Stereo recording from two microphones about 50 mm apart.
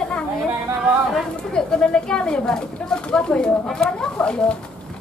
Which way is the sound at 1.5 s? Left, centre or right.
Centre.